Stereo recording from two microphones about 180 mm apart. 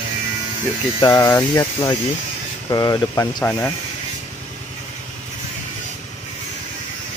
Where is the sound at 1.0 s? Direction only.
20° left (ahead or behind).